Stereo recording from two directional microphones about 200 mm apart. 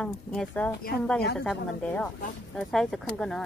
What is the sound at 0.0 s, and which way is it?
Speech, 5° left (ahead or behind).